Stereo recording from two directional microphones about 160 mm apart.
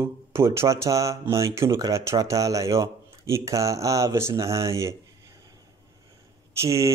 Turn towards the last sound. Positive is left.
turn(degrees=-20)  # may be behind; listen again after turning